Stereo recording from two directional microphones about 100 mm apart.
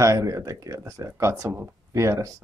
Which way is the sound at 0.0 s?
30° right (ahead or behind).